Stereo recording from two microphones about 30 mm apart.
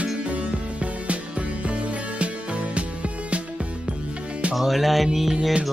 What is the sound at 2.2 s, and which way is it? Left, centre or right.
Music, right.